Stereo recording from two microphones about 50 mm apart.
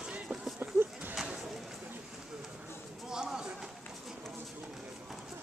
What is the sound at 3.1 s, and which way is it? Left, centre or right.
Run, centre.